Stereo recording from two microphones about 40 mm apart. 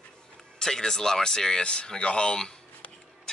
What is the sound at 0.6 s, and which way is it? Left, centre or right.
Speech, centre.